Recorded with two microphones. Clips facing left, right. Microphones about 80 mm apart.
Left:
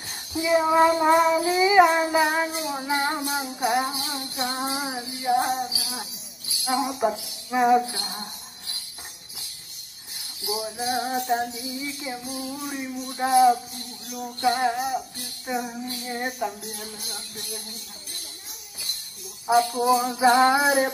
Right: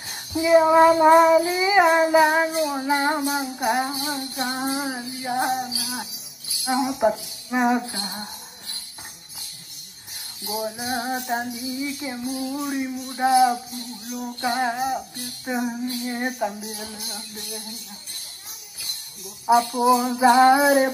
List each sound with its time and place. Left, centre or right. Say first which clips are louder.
0.1 s child singing: right 5 dB; centre
4.2 s music: right 2 dB; centre
4.6 s female singing: right 3 dB; centre
5.2 s child singing: left 1 dB; centre
6.6 s music: right 3 dB; right
7.9 s a sound: right 2 dB; right
10.4 s music: even; centre
15.4 s child singing: right 3 dB; centre
16.3 s music: right 3 dB; centre
19.4 s music: right 2 dB; centre